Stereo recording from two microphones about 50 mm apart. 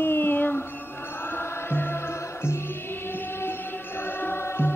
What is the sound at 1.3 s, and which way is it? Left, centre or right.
Music, left.